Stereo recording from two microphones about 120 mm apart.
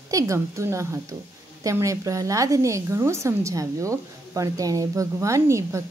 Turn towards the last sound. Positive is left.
turn(degrees=-25)  # may be behind; listen again after turning